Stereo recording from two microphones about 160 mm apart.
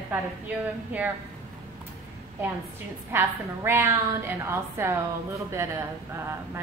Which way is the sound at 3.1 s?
15° right (ahead or behind).